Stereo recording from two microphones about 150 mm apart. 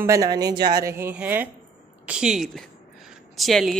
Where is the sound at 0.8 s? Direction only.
15° right (ahead or behind).